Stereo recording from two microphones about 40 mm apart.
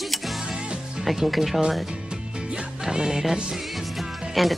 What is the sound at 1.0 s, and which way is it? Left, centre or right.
Speech, centre.